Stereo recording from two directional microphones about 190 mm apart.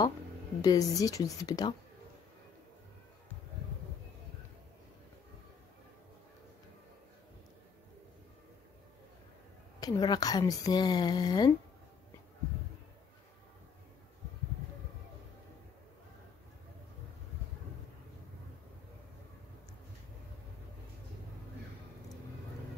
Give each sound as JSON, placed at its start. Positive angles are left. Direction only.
{"t": 0.6, "sound": "a woman's voice", "side_deg": 20}
{"t": 9.8, "sound": "a woman's voice", "side_deg": 20}